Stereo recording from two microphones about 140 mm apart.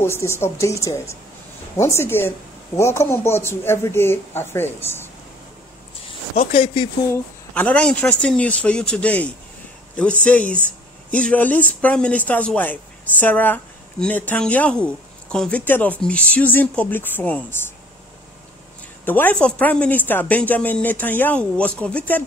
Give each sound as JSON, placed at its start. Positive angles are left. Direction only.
{"t": 0.0, "sound": "a woman's voice", "side_deg": 20}
{"t": 6.0, "sound": "speech", "side_deg": 40}
{"t": 7.5, "sound": "a woman's voice", "side_deg": 10}
{"t": 19.0, "sound": "a woman's voice", "side_deg": 15}